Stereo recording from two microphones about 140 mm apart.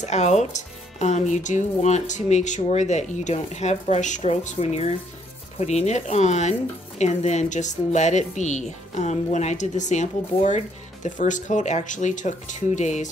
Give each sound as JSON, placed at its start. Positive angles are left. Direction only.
{"t": 0.0, "sound": "speech", "side_deg": 55}